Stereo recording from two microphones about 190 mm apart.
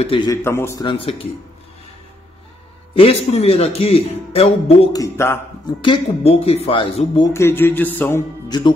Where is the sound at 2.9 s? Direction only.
30° left (ahead or behind).